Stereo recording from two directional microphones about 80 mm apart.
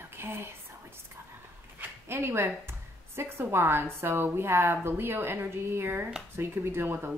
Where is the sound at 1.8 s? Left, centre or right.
Right.